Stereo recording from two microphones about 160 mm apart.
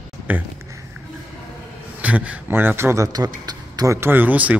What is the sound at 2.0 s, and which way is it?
A woman's voice, 10° right (ahead or behind).